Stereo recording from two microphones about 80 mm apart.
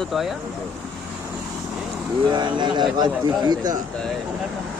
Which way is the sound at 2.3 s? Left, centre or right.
Right.